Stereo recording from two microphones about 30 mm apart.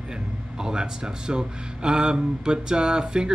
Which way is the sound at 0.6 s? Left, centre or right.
Right.